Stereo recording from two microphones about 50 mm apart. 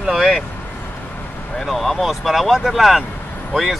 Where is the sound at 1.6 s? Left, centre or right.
Centre.